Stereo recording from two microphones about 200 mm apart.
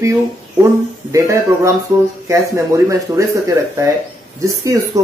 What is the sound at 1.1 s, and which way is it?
Speech, 15° right (ahead or behind).